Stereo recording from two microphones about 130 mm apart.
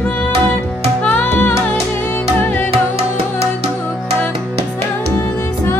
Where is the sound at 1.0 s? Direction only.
10° left (ahead or behind).